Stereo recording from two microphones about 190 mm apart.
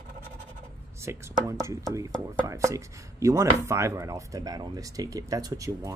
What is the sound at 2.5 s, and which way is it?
Speech, 15° right (ahead or behind).